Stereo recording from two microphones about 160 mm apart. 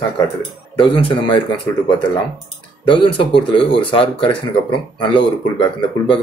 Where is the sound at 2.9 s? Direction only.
30° left (ahead or behind).